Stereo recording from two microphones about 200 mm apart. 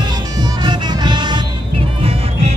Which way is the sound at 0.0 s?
20° right (ahead or behind).